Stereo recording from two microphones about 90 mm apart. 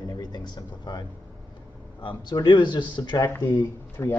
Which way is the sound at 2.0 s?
60° left (ahead or behind).